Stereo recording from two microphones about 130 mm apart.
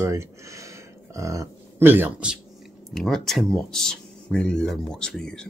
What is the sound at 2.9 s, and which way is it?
Speech, centre (ahead or behind).